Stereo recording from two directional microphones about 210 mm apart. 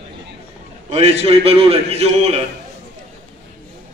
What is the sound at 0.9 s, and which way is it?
A man's voice, 30° right (ahead or behind).